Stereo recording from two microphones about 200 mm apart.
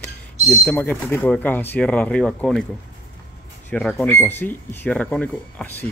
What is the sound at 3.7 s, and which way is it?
Speech, 10° left (ahead or behind).